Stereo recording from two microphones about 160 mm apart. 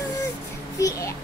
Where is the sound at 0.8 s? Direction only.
20° left (ahead or behind).